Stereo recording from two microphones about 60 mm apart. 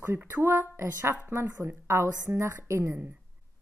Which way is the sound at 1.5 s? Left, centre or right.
Right.